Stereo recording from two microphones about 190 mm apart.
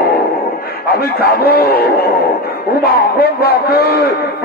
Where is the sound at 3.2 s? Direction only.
55° left (ahead or behind).